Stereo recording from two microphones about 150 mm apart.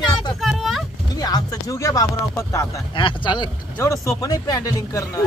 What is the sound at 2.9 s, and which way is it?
Speech, 35° left (ahead or behind).